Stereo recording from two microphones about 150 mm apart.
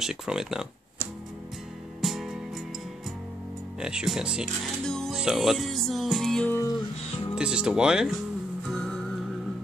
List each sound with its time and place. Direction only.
0.0 s music: 5° right (ahead or behind)
2.0 s music: 5° right (ahead or behind)
3.8 s music: 5° right (ahead or behind)